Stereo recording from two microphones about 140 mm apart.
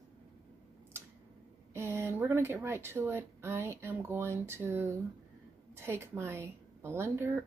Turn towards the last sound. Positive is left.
turn(degrees=-20)  # may be behind; listen again after turning